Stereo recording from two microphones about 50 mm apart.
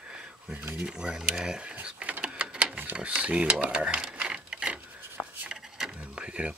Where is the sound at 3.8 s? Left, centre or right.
Right.